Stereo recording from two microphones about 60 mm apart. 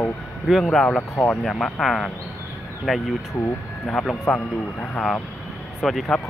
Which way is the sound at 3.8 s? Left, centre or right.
Centre.